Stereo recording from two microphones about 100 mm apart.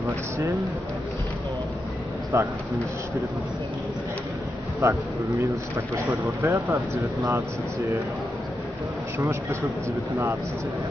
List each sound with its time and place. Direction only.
2.3 s speech: 30° right (ahead or behind)
4.8 s speech: 30° right (ahead or behind)
6.4 s speech: 30° right (ahead or behind)
9.2 s speech: 25° right (ahead or behind)